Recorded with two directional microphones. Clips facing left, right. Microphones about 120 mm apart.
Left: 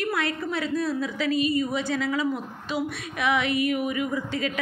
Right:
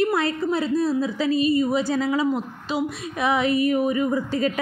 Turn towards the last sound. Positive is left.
turn(degrees=-40)  # may be behind; listen again after turning